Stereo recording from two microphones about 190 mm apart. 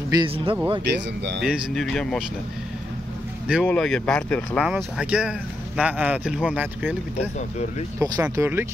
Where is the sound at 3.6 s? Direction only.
5° left (ahead or behind).